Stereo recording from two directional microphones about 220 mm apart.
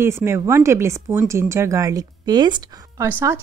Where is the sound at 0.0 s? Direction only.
10° right (ahead or behind).